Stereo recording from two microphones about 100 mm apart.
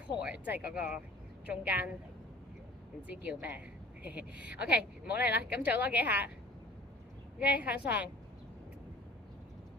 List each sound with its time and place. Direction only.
0.2 s a woman's voice: 15° right (ahead or behind)
3.1 s a woman's voice: 15° right (ahead or behind)
7.3 s a woman's voice: 15° right (ahead or behind)